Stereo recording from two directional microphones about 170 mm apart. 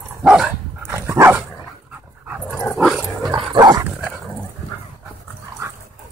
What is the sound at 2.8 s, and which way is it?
Dog, 5° right (ahead or behind).